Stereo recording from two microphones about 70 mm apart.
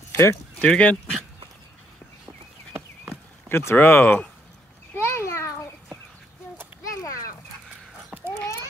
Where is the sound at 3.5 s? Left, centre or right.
Left.